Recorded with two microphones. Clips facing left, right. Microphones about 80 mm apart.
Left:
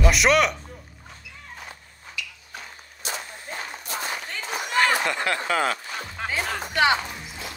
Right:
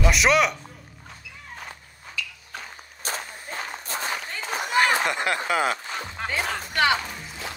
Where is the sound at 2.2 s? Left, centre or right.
Right.